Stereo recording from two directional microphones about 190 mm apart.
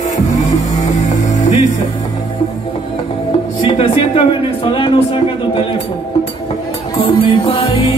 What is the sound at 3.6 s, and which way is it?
Music, 30° left (ahead or behind).